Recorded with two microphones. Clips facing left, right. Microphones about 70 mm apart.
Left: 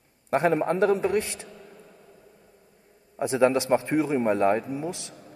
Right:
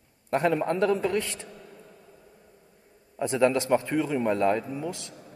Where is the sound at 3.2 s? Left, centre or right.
Centre.